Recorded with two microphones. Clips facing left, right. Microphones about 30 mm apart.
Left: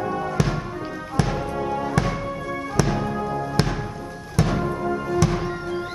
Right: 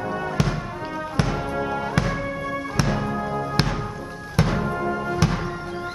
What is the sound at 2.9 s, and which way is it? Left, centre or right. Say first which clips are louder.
Music: even; centre.